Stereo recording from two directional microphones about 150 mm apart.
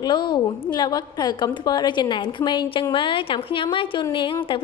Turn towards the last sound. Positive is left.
turn(degrees=35)  # may be behind; listen again after turning